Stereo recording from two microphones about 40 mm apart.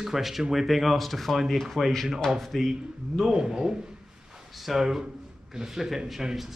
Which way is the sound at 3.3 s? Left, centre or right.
Centre.